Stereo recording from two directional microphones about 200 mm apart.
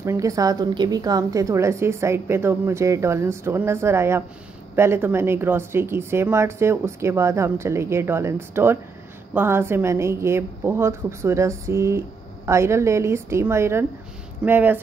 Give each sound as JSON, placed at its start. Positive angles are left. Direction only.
{"t": 0.0, "sound": "a woman's voice", "side_deg": -15}